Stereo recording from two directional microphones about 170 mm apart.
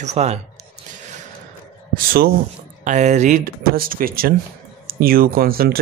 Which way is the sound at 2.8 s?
45° right (ahead or behind).